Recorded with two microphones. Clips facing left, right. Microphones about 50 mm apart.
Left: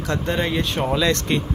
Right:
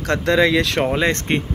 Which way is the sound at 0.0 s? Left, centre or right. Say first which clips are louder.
Right 6 dB; right.